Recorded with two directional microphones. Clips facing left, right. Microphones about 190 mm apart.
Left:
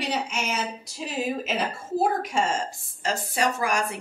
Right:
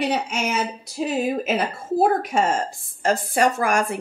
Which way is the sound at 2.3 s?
55° right (ahead or behind).